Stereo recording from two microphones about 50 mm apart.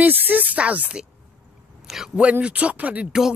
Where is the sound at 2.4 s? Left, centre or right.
Right.